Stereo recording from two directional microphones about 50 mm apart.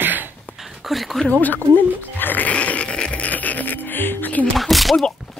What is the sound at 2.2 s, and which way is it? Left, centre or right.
Music, left.